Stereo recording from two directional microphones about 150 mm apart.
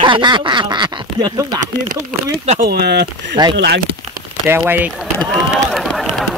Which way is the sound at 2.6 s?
90° right.